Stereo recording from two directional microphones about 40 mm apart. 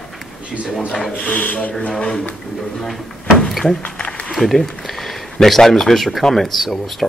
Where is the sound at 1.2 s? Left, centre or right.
Left.